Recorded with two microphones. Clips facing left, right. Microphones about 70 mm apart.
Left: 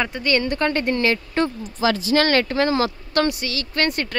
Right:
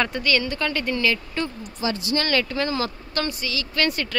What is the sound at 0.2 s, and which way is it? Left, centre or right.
Speech, left.